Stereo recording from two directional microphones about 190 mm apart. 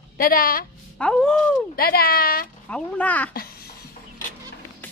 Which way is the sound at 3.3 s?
50° left (ahead or behind).